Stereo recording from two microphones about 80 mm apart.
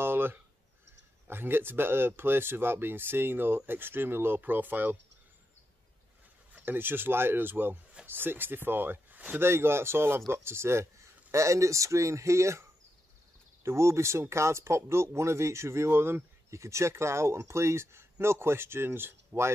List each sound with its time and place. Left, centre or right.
0.0 s a sound: right
1.2 s speech: right
6.5 s speech: right